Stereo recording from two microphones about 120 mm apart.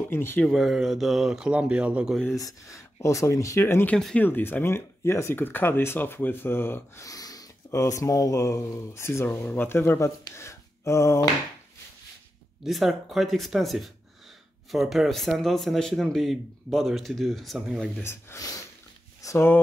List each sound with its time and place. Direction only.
0.1 s speech: 20° left (ahead or behind)
0.5 s speech: centre (ahead or behind)
2.3 s speech: 30° left (ahead or behind)
12.6 s speech: centre (ahead or behind)
17.9 s speech: 20° left (ahead or behind)